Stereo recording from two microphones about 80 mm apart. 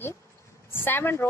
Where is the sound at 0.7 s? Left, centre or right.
Left.